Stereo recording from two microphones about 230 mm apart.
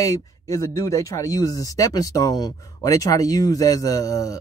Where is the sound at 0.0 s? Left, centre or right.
Centre.